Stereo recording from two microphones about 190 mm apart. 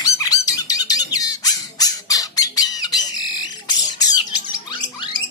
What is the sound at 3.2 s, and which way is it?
Squawk, 20° left (ahead or behind).